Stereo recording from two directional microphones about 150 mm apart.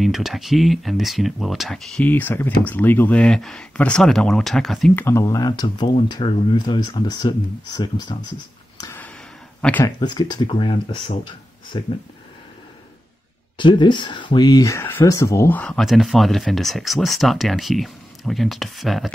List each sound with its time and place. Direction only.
0.0 s speech: centre (ahead or behind)
4.9 s speech: 15° left (ahead or behind)
9.6 s speech: 10° left (ahead or behind)
9.8 s speech: 30° left (ahead or behind)
13.6 s speech: 30° left (ahead or behind); by 15.8 s 10° left (ahead or behind)
15.8 s speech: centre (ahead or behind)